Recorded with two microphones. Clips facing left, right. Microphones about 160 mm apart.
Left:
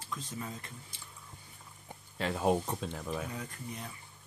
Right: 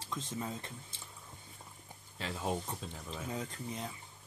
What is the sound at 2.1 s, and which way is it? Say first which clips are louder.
Speech: left 7 dB; 60° left (ahead or behind).